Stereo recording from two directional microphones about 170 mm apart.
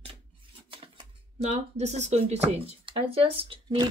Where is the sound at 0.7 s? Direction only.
35° right (ahead or behind).